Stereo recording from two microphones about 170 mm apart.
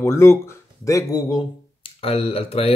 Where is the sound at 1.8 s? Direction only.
35° left (ahead or behind).